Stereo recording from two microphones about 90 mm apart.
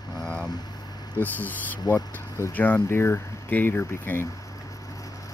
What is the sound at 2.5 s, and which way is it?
Speech, 20° left (ahead or behind).